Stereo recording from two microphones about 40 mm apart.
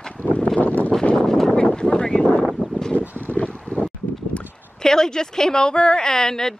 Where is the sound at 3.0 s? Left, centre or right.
Right.